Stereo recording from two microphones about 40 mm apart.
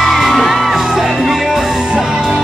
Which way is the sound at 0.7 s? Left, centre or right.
Centre.